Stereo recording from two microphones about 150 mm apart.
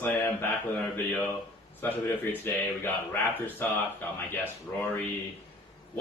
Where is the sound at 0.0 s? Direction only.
15° left (ahead or behind).